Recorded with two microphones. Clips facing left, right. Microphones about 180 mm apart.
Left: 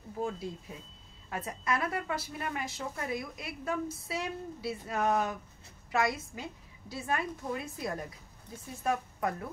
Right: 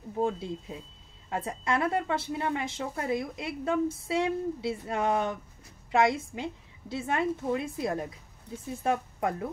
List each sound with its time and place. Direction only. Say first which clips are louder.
0.2 s a woman's voice: right 6 dB; 25° right (ahead or behind)